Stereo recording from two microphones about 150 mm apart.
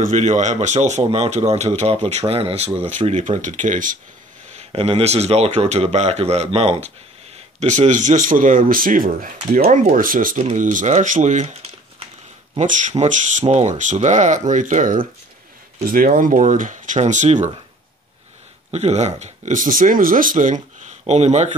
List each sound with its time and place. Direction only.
0.0 s speech: 50° right (ahead or behind)
4.6 s speech: 40° right (ahead or behind)
12.5 s speech: 55° right (ahead or behind)
15.8 s speech: 75° right (ahead or behind); by 17.5 s 55° right (ahead or behind)
18.7 s speech: 45° right (ahead or behind)